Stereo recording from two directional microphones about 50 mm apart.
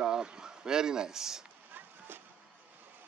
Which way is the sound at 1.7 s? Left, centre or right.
Right.